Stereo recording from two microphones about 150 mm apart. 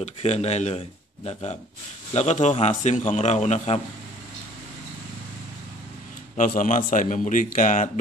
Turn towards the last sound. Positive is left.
turn(degrees=55)  # may be behind; listen again after turning